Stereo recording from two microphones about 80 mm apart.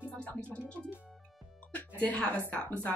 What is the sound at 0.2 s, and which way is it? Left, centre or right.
Music, centre.